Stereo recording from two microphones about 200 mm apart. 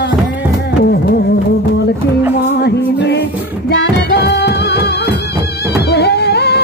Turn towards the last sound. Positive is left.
turn(degrees=55)  # may be behind; listen again after turning